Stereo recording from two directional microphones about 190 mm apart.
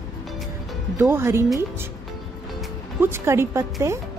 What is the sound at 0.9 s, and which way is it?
Speech, 10° right (ahead or behind).